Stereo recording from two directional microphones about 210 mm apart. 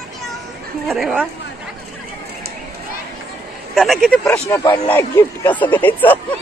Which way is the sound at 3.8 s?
Centre (ahead or behind).